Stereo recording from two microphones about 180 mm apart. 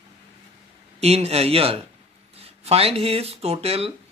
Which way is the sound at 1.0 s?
35° right (ahead or behind).